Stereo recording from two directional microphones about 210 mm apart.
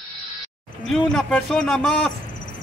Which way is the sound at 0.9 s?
5° left (ahead or behind).